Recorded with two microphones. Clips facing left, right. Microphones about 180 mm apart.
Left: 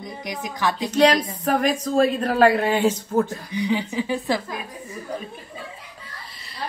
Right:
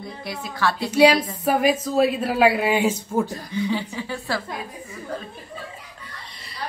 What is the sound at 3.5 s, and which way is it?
Speech, 15° left (ahead or behind).